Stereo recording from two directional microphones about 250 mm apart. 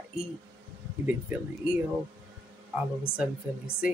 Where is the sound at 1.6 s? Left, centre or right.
Centre.